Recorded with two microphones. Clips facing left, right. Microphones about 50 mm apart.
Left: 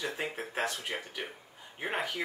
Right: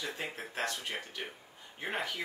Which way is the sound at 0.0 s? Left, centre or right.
Left.